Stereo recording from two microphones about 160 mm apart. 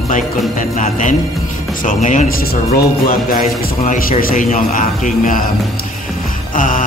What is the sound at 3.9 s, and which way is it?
A man's voice, 60° left (ahead or behind).